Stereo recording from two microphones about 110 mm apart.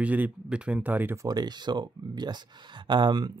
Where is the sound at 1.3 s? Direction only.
40° right (ahead or behind).